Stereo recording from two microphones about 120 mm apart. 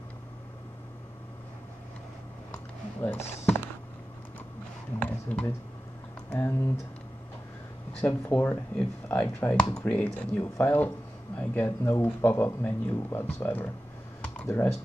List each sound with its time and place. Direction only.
3.0 s speech: 15° left (ahead or behind)
5.0 s a sound: 15° left (ahead or behind)
6.3 s speech: 20° left (ahead or behind)
8.0 s speech: 15° left (ahead or behind)
14.2 s computer keyboard: 10° left (ahead or behind)
14.5 s speech: 25° left (ahead or behind)